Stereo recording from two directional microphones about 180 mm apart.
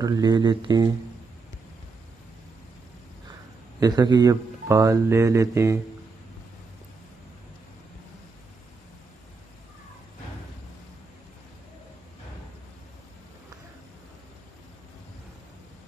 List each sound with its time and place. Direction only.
0.0 s speech: 20° right (ahead or behind)
3.8 s a man's voice: 20° right (ahead or behind)